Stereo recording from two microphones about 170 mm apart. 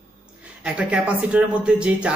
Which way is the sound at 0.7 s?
5° right (ahead or behind).